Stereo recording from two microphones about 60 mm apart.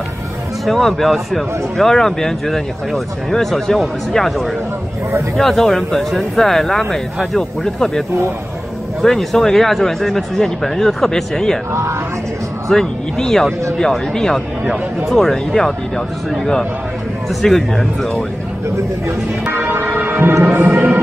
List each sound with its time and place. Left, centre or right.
0.7 s speech: centre
5.4 s speech: centre
9.0 s speech: centre
12.6 s speech: centre
19.0 s speech: right
20.5 s music: right